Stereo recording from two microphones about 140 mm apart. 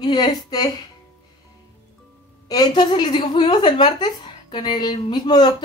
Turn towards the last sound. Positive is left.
turn(degrees=30)  # may be behind; listen again after turning